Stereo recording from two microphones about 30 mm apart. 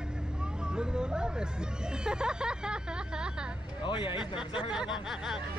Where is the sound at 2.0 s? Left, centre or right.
Right.